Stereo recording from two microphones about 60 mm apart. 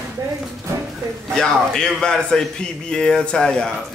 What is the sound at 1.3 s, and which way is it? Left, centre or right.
A man's voice, centre.